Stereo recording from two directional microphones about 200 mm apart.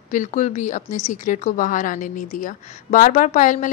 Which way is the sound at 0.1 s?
40° left (ahead or behind).